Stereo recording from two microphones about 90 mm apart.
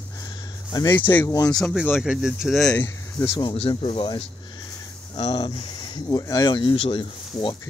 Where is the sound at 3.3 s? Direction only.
70° left (ahead or behind).